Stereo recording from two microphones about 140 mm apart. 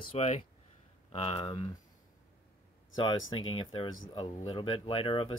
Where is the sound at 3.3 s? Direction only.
35° left (ahead or behind).